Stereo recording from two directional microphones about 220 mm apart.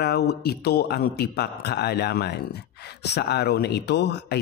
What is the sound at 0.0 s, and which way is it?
A man's voice, 45° left (ahead or behind).